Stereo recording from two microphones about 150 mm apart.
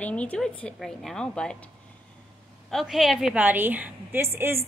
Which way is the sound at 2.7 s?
Centre (ahead or behind).